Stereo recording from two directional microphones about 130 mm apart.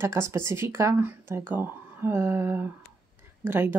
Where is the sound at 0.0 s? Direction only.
20° right (ahead or behind).